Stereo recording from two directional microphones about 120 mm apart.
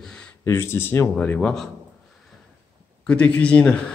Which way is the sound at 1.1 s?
10° left (ahead or behind).